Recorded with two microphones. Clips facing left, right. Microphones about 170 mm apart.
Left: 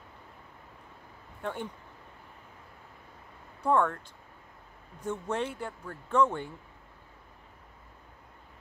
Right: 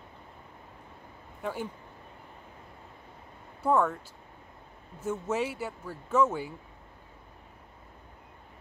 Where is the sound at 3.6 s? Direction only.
5° right (ahead or behind).